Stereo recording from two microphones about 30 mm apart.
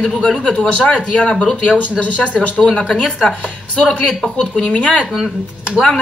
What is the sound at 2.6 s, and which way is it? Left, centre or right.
Speech, left.